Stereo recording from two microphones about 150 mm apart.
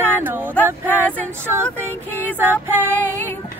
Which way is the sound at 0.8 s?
10° left (ahead or behind).